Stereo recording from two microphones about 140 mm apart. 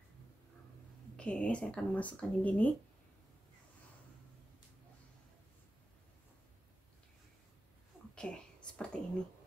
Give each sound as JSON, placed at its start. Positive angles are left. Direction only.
{"t": 1.1, "sound": "speech", "side_deg": 5}
{"t": 8.1, "sound": "whispering", "side_deg": 5}